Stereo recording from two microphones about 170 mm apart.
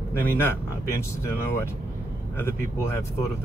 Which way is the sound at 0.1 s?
15° left (ahead or behind).